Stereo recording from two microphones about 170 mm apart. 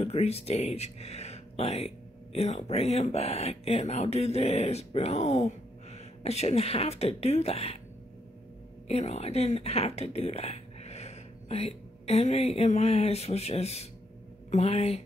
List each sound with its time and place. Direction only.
0.0 s speech: 35° left (ahead or behind)
8.8 s speech: 40° left (ahead or behind)